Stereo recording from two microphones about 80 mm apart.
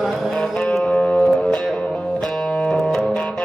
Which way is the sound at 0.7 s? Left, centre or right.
Centre.